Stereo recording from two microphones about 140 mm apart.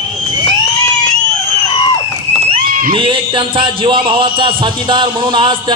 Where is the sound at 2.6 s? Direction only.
90° right.